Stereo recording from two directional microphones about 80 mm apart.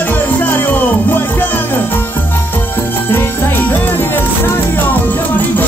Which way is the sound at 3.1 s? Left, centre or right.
Left.